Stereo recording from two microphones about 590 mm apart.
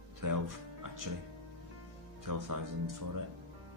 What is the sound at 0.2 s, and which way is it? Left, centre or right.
Music, right.